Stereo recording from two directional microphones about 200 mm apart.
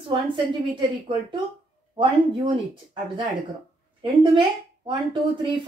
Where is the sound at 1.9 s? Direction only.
25° right (ahead or behind).